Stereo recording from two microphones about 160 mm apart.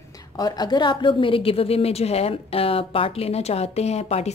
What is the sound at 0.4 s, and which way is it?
A woman's voice, 25° left (ahead or behind).